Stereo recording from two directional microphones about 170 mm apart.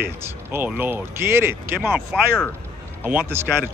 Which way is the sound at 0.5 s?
10° right (ahead or behind).